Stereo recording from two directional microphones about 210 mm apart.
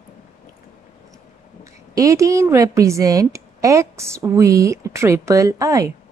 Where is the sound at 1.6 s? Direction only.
15° right (ahead or behind).